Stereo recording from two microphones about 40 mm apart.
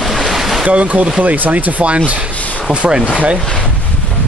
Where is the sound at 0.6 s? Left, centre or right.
Right.